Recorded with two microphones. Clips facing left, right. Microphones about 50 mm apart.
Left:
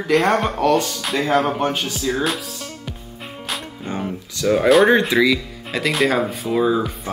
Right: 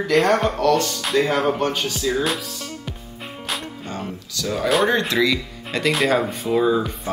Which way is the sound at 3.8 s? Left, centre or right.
Centre.